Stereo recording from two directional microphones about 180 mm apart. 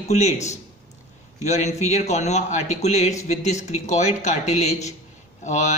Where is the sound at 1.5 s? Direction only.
40° left (ahead or behind).